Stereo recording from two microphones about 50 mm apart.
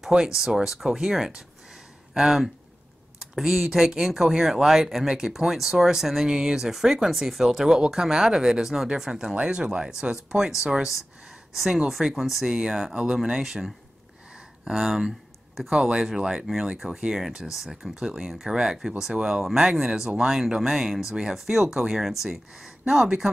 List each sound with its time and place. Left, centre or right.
0.4 s speech: centre
5.0 s speech: centre